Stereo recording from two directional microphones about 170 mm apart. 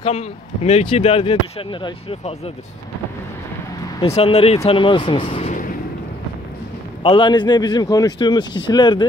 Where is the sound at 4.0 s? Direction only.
35° left (ahead or behind).